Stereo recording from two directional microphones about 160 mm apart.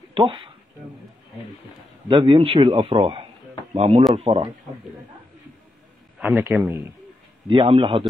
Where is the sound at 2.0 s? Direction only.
35° right (ahead or behind).